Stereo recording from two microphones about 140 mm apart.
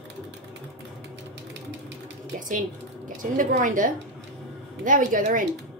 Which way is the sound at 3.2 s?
65° right (ahead or behind).